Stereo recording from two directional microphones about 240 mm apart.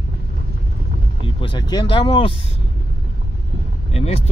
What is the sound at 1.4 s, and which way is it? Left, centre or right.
Speech, centre.